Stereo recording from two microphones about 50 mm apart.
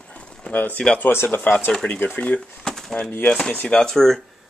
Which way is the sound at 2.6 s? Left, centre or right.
Centre.